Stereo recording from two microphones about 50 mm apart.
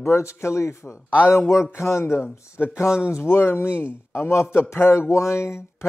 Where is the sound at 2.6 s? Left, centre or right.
Left.